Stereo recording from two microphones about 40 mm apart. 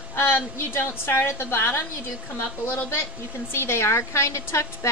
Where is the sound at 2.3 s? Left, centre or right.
Left.